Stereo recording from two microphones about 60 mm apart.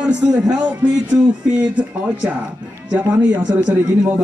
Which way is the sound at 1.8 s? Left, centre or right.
Right.